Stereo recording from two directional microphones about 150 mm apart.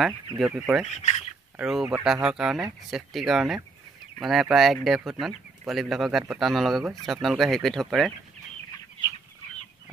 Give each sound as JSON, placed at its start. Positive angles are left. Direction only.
{"t": 0.5, "sound": "speech", "side_deg": -5}
{"t": 0.9, "sound": "speech", "side_deg": 50}
{"t": 1.6, "sound": "speech", "side_deg": -5}